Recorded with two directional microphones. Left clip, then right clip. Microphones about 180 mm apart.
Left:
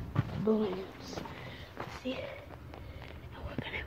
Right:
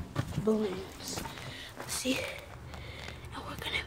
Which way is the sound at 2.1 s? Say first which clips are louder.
Right 6 dB; 55° right (ahead or behind).